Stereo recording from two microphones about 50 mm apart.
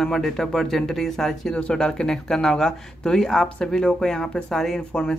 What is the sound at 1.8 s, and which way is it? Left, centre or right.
Speech, centre.